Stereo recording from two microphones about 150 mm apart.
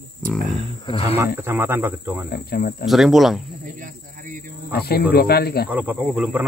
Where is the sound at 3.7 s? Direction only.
65° right (ahead or behind).